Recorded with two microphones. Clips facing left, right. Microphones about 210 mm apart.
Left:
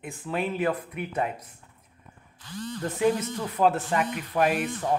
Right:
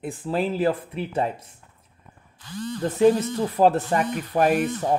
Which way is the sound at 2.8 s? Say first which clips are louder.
Right 6 dB; 30° right (ahead or behind).